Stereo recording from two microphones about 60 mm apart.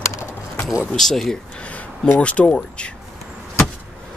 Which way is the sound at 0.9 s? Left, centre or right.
Centre.